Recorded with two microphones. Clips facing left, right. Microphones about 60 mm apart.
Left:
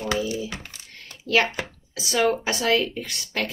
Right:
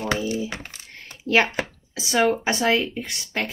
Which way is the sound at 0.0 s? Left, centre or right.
Right.